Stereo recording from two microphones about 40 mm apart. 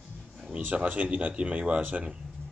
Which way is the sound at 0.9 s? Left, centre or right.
Right.